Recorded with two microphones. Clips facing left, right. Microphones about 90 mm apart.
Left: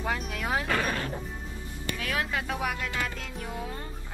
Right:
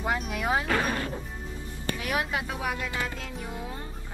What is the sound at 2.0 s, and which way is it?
Music, 20° right (ahead or behind).